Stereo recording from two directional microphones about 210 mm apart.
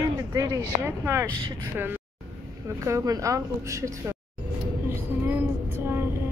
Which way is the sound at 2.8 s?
15° right (ahead or behind).